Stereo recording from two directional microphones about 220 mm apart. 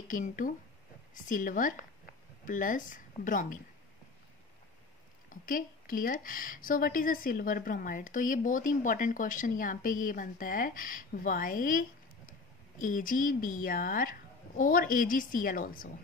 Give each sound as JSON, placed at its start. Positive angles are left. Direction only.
{"t": 0.1, "sound": "speech", "side_deg": 35}
{"t": 5.3, "sound": "speech", "side_deg": 40}
{"t": 12.8, "sound": "speech", "side_deg": 40}